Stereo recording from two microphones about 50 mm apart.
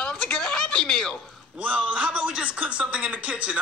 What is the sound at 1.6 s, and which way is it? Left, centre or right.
Speech, right.